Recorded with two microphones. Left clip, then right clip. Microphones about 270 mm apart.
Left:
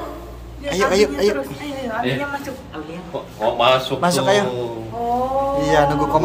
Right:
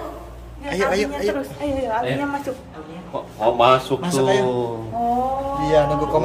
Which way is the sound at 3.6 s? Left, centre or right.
Right.